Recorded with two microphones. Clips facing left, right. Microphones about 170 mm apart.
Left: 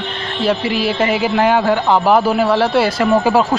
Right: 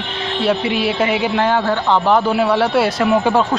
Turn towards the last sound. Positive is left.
turn(degrees=5)  # may be behind; listen again after turning